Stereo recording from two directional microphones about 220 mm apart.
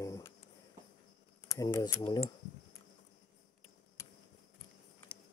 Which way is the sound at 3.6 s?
15° left (ahead or behind).